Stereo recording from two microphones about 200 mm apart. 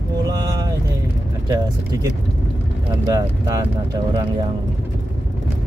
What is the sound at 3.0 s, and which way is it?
Speech, 15° right (ahead or behind).